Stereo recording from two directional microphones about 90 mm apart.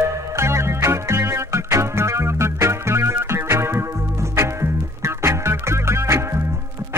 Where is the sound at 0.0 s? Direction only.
30° right (ahead or behind).